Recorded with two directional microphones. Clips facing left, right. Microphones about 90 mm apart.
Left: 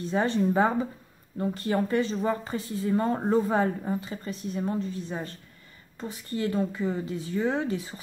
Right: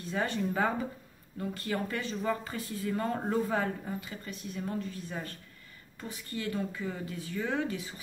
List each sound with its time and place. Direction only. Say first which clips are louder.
0.0 s speech: left 7 dB; 25° left (ahead or behind)